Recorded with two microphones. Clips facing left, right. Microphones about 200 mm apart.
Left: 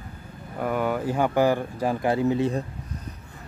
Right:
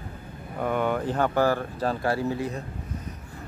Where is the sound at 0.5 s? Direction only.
5° left (ahead or behind); by 2.5 s 20° left (ahead or behind).